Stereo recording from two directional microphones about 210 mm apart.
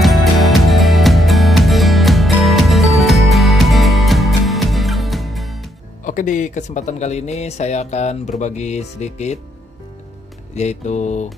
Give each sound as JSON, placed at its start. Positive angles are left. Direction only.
{"t": 0.0, "sound": "music", "side_deg": 0}
{"t": 6.0, "sound": "speech", "side_deg": 40}
{"t": 10.5, "sound": "speech", "side_deg": 30}